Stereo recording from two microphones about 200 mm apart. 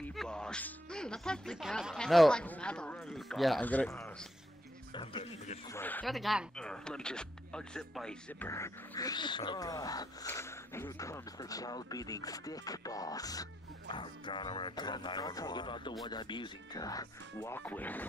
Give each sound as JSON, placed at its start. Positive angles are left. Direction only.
{"t": 0.0, "sound": "speech", "side_deg": 0}
{"t": 4.9, "sound": "speech", "side_deg": 25}
{"t": 5.7, "sound": "speech", "side_deg": 10}